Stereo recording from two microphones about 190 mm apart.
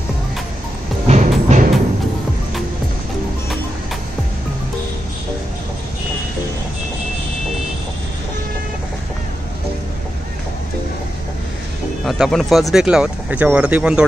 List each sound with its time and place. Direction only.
1.0 s music: 40° right (ahead or behind)
12.0 s speech: centre (ahead or behind)